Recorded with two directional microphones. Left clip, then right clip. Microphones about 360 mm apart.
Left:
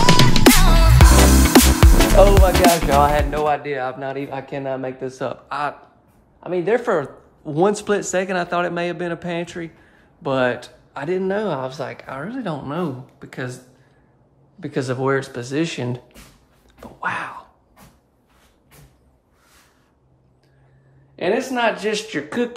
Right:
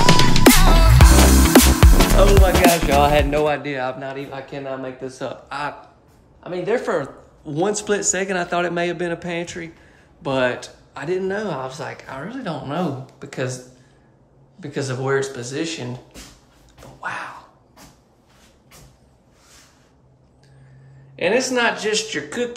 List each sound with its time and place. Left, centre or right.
0.0 s music: centre
2.6 s speech: centre
14.6 s speech: centre
17.0 s a sound: centre
21.2 s speech: centre